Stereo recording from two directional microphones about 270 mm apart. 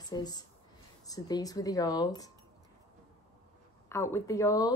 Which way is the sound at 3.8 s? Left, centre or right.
Centre.